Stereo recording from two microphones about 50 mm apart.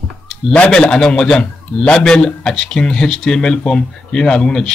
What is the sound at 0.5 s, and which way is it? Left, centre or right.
A man's voice, centre.